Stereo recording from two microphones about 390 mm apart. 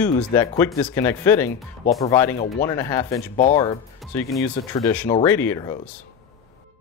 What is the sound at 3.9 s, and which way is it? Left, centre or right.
Speech, centre.